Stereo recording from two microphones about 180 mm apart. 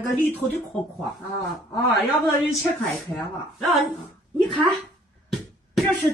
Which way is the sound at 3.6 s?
Centre (ahead or behind).